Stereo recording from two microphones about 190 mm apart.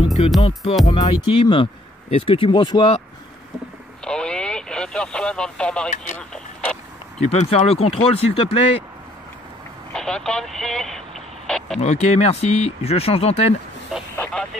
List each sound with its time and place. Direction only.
0.4 s speech: 30° left (ahead or behind)
4.0 s radio: 5° left (ahead or behind)
6.1 s vehicle: 5° left (ahead or behind)
7.2 s speech: 35° left (ahead or behind)
9.9 s vehicle: 5° left (ahead or behind)
11.8 s speech: 35° left (ahead or behind)
14.1 s vehicle: 5° left (ahead or behind)